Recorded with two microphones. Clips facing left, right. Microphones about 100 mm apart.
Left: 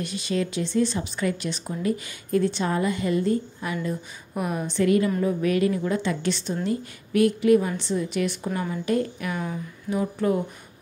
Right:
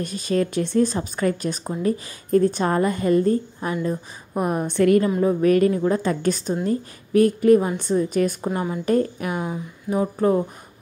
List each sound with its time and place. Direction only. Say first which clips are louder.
0.0 s a woman's voice: right 4 dB; 45° right (ahead or behind)
8.5 s a woman's voice: right 4 dB; 30° right (ahead or behind)
9.3 s speech: right 3 dB; 20° right (ahead or behind)
9.8 s a woman's voice: right 4 dB; 35° right (ahead or behind)